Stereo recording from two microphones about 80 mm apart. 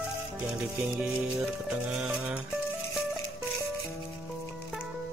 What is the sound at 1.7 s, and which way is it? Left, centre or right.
Speech, centre.